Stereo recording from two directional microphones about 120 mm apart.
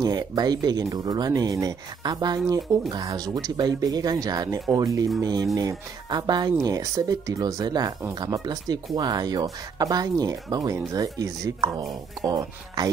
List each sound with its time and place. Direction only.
0.0 s speech: 35° right (ahead or behind)